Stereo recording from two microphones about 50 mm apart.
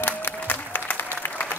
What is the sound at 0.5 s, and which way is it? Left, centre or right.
Applause, left.